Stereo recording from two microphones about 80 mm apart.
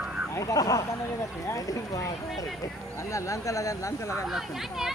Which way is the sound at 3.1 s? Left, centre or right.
Left.